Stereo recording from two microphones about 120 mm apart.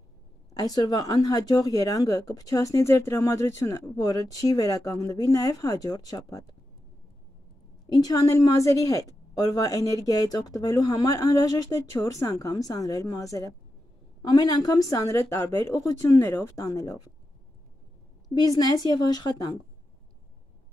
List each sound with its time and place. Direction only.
0.6 s speech: 35° left (ahead or behind)
7.9 s speech: 30° left (ahead or behind)
18.3 s a woman's voice: 35° left (ahead or behind)